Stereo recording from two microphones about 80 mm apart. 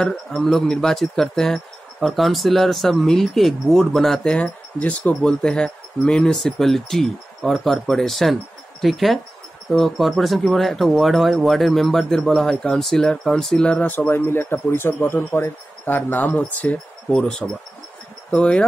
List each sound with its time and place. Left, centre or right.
0.3 s speech: centre
13.7 s a man's voice: left